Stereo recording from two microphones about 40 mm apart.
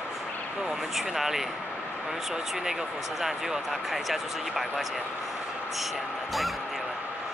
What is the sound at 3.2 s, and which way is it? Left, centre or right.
Speech, centre.